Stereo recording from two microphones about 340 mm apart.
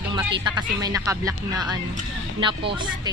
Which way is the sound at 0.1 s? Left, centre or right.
Centre.